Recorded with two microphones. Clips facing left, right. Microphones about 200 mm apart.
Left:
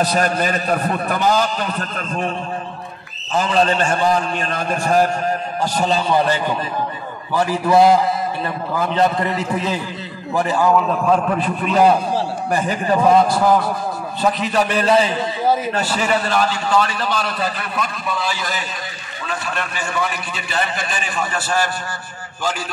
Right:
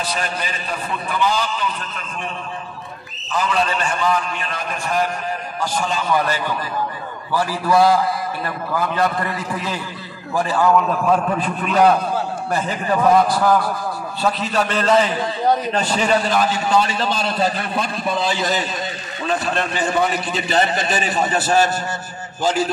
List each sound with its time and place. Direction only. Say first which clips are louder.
0.0 s a man's voice: left 7 dB; 45° left (ahead or behind)
3.3 s a man's voice: left 4 dB; 30° left (ahead or behind)
10.7 s a man's voice: even; centre (ahead or behind)
16.3 s a man's voice: even; 20° right (ahead or behind)
20.5 s a man's voice: right 4 dB; 40° right (ahead or behind)
21.2 s a man's voice: right 4 dB; 20° right (ahead or behind)